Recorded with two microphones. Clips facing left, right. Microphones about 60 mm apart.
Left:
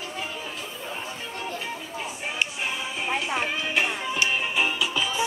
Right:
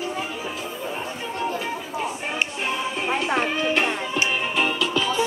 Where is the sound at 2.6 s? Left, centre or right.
Centre.